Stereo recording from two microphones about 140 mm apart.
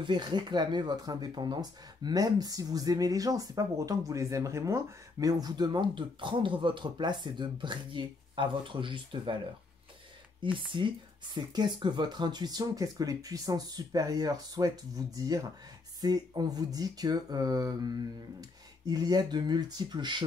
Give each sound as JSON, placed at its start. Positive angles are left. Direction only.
{"t": 0.0, "sound": "speech", "side_deg": -35}
{"t": 10.4, "sound": "speech", "side_deg": -35}